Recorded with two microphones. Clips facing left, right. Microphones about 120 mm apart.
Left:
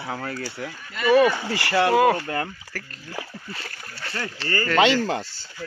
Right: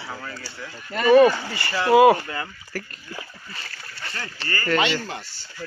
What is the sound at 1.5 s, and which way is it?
Speech, 75° left (ahead or behind).